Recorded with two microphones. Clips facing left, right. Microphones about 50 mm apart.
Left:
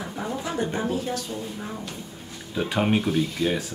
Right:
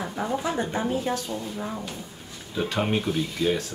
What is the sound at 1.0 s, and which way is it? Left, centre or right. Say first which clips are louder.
Speech: right 2 dB; right.